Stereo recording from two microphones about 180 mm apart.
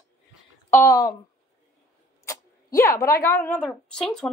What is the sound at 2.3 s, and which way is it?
Speech, 20° left (ahead or behind).